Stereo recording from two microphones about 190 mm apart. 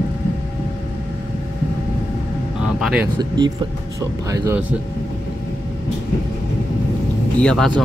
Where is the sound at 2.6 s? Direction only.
5° right (ahead or behind).